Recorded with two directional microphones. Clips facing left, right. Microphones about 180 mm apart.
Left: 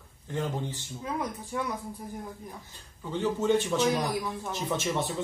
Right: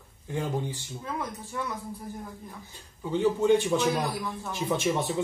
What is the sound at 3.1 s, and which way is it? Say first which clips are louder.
Speech: right 3 dB; 15° right (ahead or behind).